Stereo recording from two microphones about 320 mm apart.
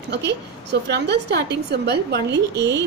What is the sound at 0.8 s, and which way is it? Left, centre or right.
A woman's voice, right.